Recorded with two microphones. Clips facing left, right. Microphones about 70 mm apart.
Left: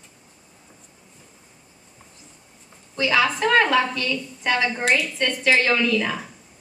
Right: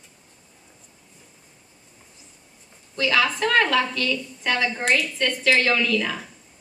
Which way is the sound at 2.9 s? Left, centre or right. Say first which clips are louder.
Left 1 dB; centre.